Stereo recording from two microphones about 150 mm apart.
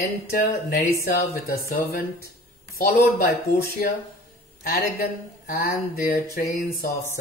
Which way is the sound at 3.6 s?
70° left (ahead or behind).